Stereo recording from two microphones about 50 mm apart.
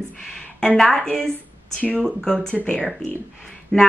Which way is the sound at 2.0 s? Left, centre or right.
Centre.